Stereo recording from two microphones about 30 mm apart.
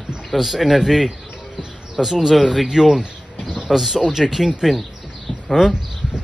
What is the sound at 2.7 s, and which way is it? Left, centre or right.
Speech, centre.